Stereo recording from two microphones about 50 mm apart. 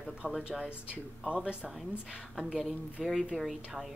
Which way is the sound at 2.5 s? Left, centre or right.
Centre.